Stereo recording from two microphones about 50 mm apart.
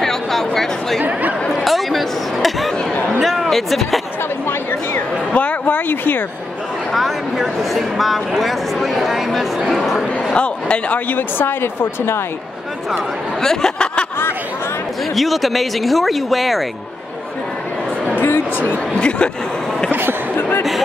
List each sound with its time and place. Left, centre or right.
0.0 s chatter: centre
1.6 s a sound: centre
4.9 s a sound: left
5.9 s speech: left
6.9 s speech: centre
10.3 s speech: left
11.1 s speech: left
13.4 s speech: centre
15.1 s speech: centre
18.1 s a sound: left
18.9 s speech: centre
19.9 s a sound: right